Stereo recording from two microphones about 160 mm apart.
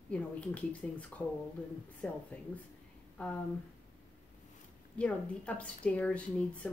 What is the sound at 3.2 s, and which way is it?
Speech, 10° left (ahead or behind).